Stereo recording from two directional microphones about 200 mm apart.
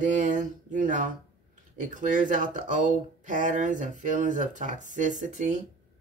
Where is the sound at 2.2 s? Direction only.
40° right (ahead or behind).